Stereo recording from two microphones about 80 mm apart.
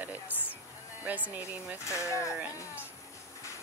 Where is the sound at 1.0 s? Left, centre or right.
Right.